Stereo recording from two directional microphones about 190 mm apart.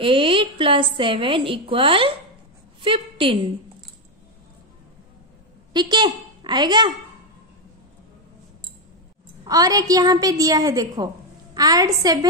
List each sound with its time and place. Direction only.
0.0 s a woman's voice: 25° right (ahead or behind)
5.7 s a woman's voice: 25° right (ahead or behind)
9.4 s a woman's voice: 20° right (ahead or behind)